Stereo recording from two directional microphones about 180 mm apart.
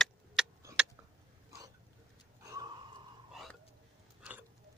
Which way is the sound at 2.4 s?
20° right (ahead or behind).